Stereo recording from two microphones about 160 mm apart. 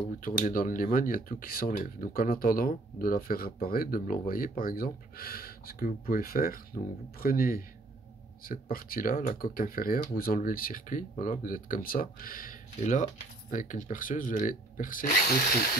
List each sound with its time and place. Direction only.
0.2 s speech: 60° left (ahead or behind)